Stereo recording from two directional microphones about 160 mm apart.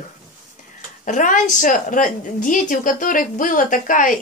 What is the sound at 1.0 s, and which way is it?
A woman's voice, 55° left (ahead or behind).